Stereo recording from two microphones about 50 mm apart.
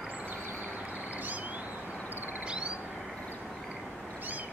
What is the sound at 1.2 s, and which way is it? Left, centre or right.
Vehicle, right.